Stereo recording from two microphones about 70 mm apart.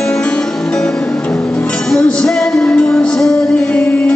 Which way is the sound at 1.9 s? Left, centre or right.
Centre.